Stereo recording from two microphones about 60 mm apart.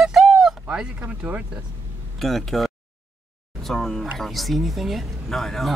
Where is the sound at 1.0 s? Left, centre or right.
Right.